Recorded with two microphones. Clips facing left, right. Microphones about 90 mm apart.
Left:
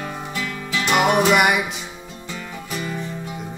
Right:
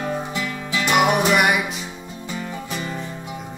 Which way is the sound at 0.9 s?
Centre (ahead or behind).